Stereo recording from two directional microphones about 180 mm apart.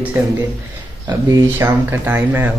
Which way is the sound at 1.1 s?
20° right (ahead or behind).